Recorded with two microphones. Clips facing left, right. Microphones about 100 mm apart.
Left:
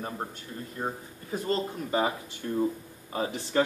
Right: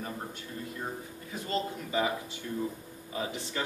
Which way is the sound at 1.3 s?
40° left (ahead or behind).